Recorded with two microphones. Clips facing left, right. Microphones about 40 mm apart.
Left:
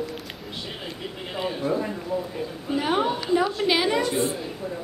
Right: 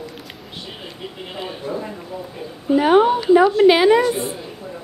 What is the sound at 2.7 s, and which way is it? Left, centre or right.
A woman's voice, centre.